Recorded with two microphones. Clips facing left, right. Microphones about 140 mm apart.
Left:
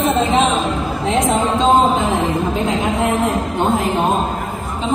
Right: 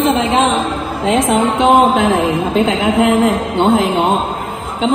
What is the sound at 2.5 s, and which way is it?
Speech, 90° right.